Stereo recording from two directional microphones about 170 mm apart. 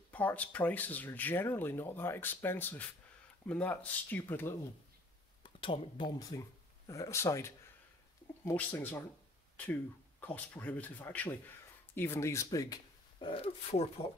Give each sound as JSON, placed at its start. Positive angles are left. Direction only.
{"t": 0.1, "sound": "speech", "side_deg": 10}
{"t": 5.4, "sound": "speech", "side_deg": 30}
{"t": 10.2, "sound": "speech", "side_deg": 10}